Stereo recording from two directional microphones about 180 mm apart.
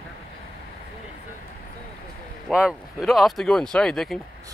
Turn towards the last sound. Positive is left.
turn(degrees=0)  # may be behind; listen again after turning